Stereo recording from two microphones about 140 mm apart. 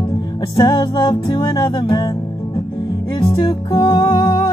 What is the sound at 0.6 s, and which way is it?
Music, 30° left (ahead or behind).